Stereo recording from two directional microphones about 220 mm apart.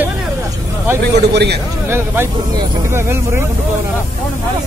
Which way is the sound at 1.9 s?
10° right (ahead or behind).